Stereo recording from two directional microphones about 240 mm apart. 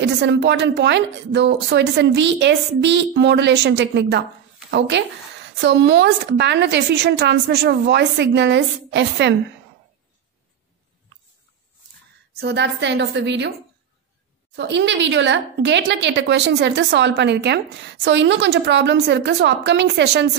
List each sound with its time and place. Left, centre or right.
0.0 s a woman's voice: right
12.4 s a woman's voice: right
14.5 s a woman's voice: right